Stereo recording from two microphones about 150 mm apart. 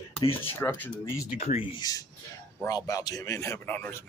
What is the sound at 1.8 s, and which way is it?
A man's voice, 25° left (ahead or behind).